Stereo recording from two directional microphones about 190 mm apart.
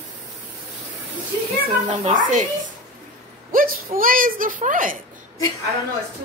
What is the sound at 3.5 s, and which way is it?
A woman's voice, 45° right (ahead or behind).